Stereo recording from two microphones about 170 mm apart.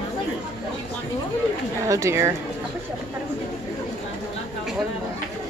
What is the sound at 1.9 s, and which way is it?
Speech, 15° right (ahead or behind).